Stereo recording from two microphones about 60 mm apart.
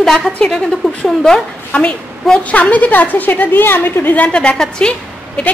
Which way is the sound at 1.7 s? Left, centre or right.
Left.